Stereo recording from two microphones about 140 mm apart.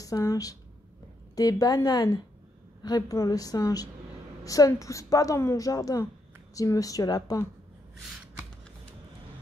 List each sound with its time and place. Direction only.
0.0 s a woman's voice: 25° left (ahead or behind)